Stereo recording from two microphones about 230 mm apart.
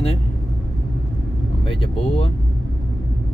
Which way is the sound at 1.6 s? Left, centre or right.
Left.